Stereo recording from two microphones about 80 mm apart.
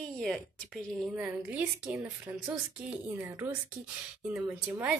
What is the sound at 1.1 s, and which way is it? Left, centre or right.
Speech, centre.